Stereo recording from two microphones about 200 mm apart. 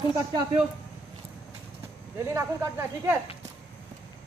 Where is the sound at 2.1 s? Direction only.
15° right (ahead or behind).